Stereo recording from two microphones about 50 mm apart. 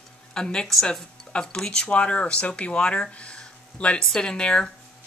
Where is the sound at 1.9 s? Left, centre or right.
Left.